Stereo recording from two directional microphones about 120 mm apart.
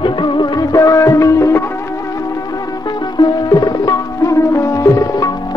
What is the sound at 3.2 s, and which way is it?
Sitar, 35° left (ahead or behind).